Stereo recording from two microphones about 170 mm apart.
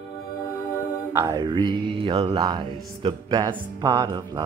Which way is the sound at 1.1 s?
20° right (ahead or behind).